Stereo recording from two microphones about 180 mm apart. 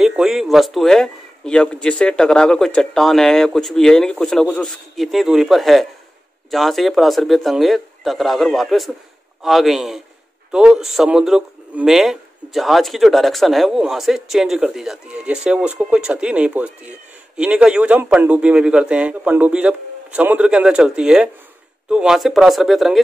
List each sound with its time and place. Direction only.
0.0 s a man's voice: 5° right (ahead or behind)